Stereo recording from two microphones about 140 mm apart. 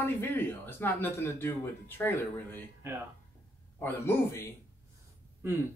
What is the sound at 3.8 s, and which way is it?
Speech, 15° left (ahead or behind).